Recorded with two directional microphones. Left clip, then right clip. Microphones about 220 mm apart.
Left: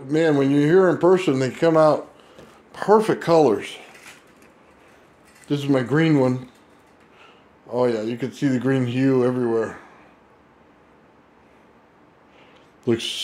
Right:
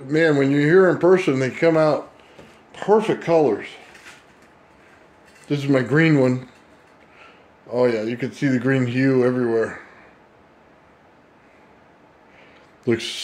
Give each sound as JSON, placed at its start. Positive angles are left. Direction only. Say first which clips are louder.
{"t": 0.0, "sound": "speech", "louder": "right 1 dB", "side_deg": 5}
{"t": 3.5, "sound": "speech", "louder": "left 1 dB", "side_deg": 35}
{"t": 5.5, "sound": "speech", "louder": "right 1 dB", "side_deg": 0}
{"t": 12.8, "sound": "speech", "louder": "even", "side_deg": 5}